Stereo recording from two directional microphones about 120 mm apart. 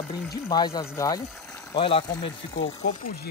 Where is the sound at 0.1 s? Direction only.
35° left (ahead or behind).